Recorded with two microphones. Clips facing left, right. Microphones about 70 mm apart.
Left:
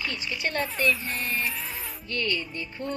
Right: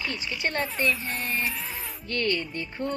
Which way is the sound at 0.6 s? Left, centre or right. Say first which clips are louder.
Left 2 dB; centre.